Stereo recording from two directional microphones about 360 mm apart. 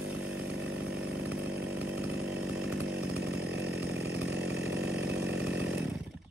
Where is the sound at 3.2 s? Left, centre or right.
Right.